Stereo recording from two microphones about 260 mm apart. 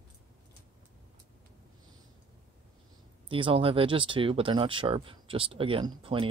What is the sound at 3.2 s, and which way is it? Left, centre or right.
Speech, centre.